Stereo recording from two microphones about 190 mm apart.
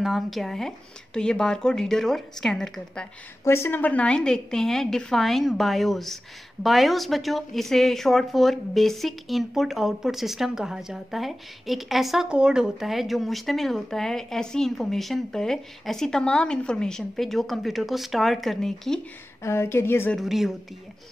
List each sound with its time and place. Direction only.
0.0 s speech: centre (ahead or behind)
19.4 s a woman's voice: 15° left (ahead or behind)
20.2 s speech: centre (ahead or behind)